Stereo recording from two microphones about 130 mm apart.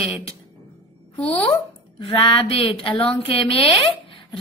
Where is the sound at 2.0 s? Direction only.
45° left (ahead or behind).